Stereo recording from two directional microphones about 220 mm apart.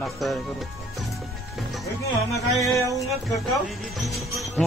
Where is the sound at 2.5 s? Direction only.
Centre (ahead or behind).